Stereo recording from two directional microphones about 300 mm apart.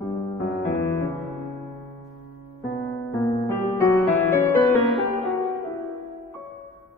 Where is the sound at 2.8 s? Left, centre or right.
Centre.